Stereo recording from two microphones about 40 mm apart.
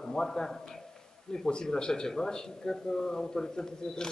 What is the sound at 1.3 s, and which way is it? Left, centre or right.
Speech, centre.